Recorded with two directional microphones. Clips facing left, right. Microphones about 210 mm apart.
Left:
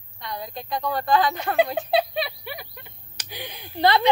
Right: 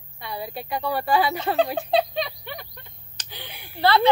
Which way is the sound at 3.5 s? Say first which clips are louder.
Left 5 dB; 10° right (ahead or behind).